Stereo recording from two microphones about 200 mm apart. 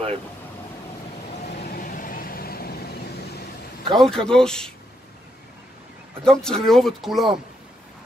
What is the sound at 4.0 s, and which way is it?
Speech, 5° left (ahead or behind).